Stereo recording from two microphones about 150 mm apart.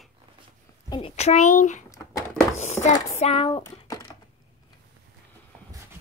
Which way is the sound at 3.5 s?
25° left (ahead or behind).